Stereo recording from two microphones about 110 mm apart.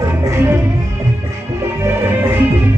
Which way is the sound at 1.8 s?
20° right (ahead or behind).